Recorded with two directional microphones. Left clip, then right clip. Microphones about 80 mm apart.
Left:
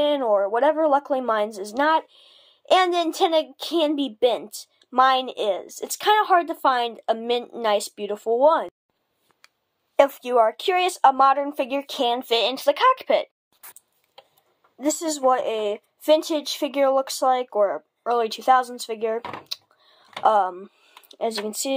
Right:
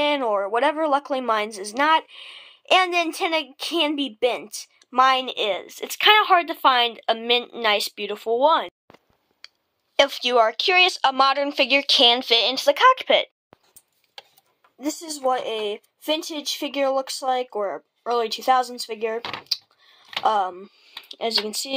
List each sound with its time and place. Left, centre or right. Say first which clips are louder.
0.0 s a sound: even; left
0.5 s speech: left 1 dB; left
5.2 s speech: even; left
10.4 s speech: right 3 dB; left
11.0 s speech: left 2 dB; centre
12.9 s speech: right 2 dB; left
14.8 s speech: left 5 dB; left
19.4 s a sound: right 7 dB; left
20.2 s speech: left 3 dB; left